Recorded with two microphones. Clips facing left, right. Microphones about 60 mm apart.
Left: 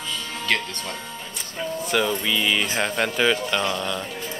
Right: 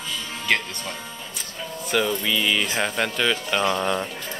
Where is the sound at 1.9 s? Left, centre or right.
Centre.